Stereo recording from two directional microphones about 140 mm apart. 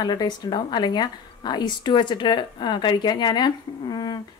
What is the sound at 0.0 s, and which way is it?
A woman's voice, 30° left (ahead or behind).